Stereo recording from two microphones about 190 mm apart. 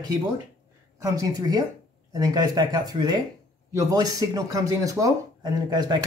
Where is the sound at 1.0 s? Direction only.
20° right (ahead or behind).